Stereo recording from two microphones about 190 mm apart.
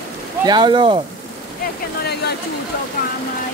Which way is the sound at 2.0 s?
60° left (ahead or behind).